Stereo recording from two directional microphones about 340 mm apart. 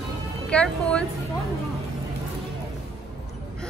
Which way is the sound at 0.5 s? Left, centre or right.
Centre.